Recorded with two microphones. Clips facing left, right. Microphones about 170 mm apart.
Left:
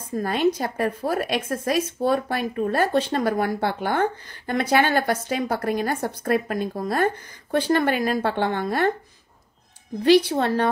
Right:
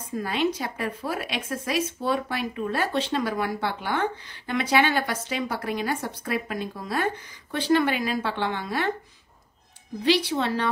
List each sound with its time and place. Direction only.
0.1 s speech: 45° left (ahead or behind)
10.0 s speech: 45° left (ahead or behind)